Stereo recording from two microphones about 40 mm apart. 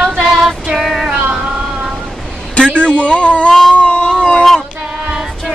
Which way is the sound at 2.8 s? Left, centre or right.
Left.